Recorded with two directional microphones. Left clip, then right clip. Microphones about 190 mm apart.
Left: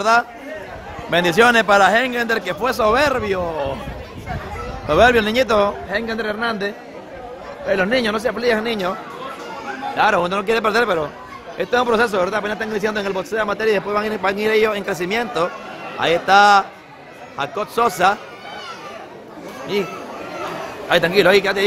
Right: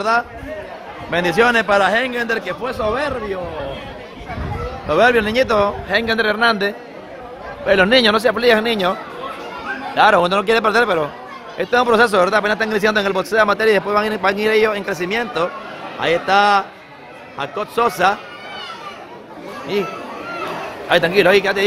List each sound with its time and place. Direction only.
1.1 s a man's voice: 10° left (ahead or behind)
2.6 s speech: 30° left (ahead or behind)
4.8 s a man's voice: 10° left (ahead or behind)
5.9 s speech: 5° right (ahead or behind)
9.9 s a man's voice: 10° right (ahead or behind)
19.7 s speech: centre (ahead or behind)
20.9 s speech: centre (ahead or behind)